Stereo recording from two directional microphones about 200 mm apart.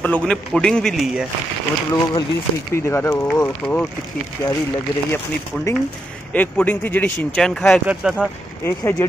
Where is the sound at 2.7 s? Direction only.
15° left (ahead or behind).